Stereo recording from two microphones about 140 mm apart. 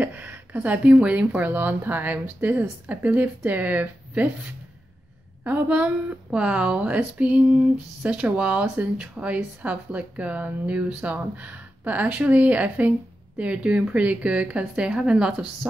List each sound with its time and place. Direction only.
0.0 s speech: 10° right (ahead or behind)
5.4 s speech: 10° right (ahead or behind)